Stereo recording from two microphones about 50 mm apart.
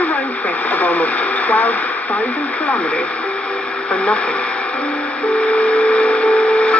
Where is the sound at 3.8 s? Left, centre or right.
Left.